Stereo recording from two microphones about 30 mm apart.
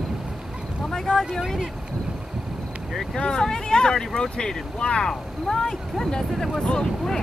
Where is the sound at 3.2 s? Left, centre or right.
Left.